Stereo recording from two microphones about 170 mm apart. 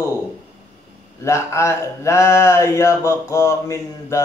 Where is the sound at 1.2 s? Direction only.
15° left (ahead or behind).